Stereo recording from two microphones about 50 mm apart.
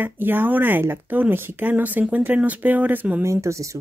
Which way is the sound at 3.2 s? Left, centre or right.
Right.